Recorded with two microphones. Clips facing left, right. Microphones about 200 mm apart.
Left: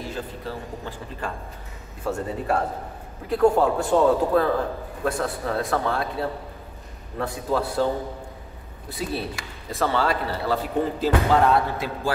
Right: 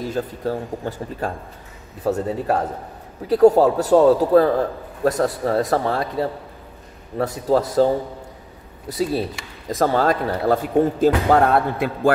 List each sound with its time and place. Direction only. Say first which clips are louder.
0.0 s a man's voice: right 8 dB; 45° right (ahead or behind)
7.2 s a man's voice: right 6 dB; 40° right (ahead or behind); by 12.1 s 55° right (ahead or behind)